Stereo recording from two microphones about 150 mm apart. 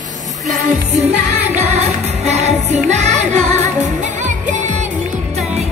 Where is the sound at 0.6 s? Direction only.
50° right (ahead or behind).